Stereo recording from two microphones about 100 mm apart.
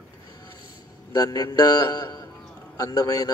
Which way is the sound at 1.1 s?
40° left (ahead or behind).